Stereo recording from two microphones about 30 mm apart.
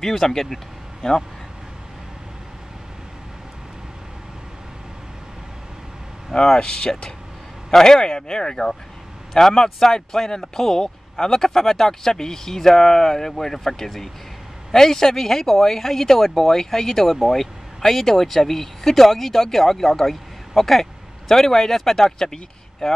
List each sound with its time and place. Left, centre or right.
0.0 s speech: centre
6.3 s speech: left
6.6 s speech: left
7.7 s speech: centre